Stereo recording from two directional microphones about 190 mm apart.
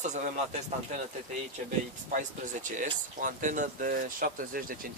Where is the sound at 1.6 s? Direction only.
50° right (ahead or behind).